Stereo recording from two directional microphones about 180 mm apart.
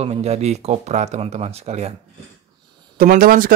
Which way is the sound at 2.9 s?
55° right (ahead or behind).